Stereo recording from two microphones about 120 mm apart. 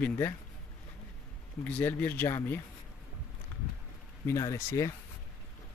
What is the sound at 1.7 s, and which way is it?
Speech, 15° left (ahead or behind).